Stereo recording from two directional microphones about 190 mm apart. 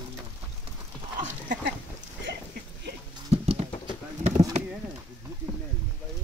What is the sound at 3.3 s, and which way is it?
Patter, 30° right (ahead or behind).